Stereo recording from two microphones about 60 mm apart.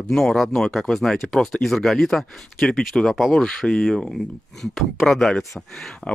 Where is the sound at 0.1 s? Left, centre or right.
Centre.